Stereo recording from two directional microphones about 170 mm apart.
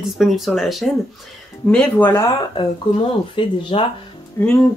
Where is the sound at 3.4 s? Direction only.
30° left (ahead or behind).